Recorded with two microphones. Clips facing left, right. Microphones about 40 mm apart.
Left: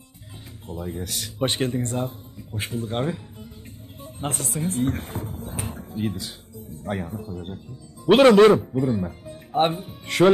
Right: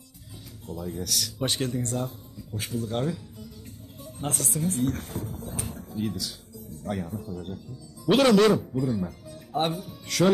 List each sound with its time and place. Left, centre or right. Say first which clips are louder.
0.7 s speech: left 1 dB; left